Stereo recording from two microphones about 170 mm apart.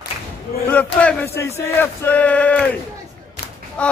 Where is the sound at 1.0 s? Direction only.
15° left (ahead or behind).